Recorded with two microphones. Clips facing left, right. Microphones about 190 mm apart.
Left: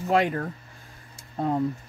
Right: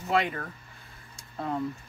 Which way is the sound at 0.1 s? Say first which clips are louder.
Left 4 dB; 45° left (ahead or behind).